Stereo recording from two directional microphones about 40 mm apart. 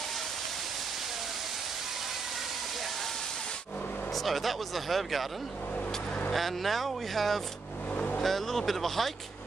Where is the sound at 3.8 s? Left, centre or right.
Left.